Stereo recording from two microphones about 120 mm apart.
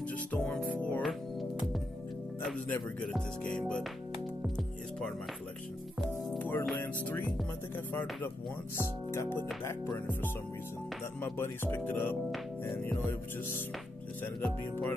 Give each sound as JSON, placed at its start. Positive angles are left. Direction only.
{"t": 0.1, "sound": "music", "side_deg": 10}
{"t": 2.5, "sound": "music", "side_deg": 5}
{"t": 6.3, "sound": "music", "side_deg": 15}
{"t": 8.7, "sound": "speech", "side_deg": 20}
{"t": 11.1, "sound": "music", "side_deg": 20}
{"t": 14.2, "sound": "music", "side_deg": 15}